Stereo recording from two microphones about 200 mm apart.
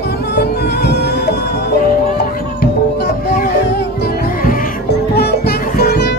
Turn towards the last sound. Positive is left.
turn(degrees=55)  # may be behind; listen again after turning